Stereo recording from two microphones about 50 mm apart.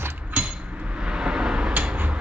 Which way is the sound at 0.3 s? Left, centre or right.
Right.